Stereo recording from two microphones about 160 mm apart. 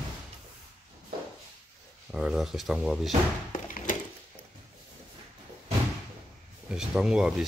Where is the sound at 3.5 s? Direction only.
55° left (ahead or behind).